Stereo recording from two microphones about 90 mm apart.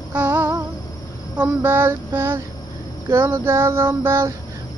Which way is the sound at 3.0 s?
30° right (ahead or behind).